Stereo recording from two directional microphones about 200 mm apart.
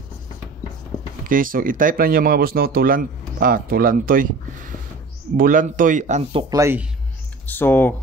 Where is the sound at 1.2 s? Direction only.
45° right (ahead or behind).